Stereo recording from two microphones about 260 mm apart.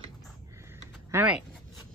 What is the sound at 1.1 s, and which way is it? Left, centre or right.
Speech, centre.